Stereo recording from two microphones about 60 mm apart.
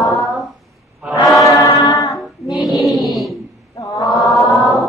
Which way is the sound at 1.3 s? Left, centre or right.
Centre.